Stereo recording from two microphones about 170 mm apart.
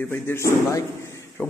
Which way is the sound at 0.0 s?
15° left (ahead or behind).